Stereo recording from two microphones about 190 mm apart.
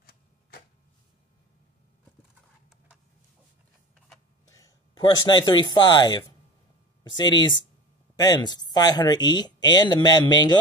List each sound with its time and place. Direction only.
4.5 s speech: 15° left (ahead or behind)